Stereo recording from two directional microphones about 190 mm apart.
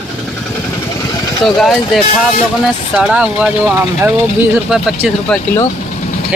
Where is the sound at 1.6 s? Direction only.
Centre (ahead or behind).